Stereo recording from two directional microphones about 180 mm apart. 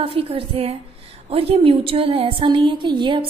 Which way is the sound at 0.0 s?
30° right (ahead or behind).